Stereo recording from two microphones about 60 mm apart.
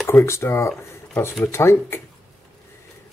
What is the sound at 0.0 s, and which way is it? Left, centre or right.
Speech, left.